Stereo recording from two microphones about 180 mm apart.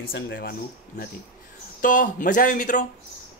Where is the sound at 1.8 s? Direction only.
45° left (ahead or behind).